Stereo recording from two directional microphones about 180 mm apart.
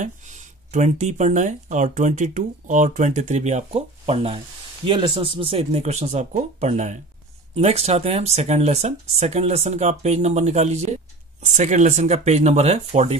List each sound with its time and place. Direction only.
0.0 s speech: 40° right (ahead or behind)